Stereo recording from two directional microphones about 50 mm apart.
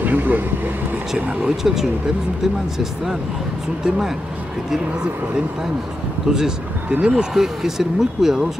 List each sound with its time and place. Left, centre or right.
0.0 s speech: right
1.6 s speech: centre
6.2 s speech: centre
6.9 s speech: right
7.2 s speech: centre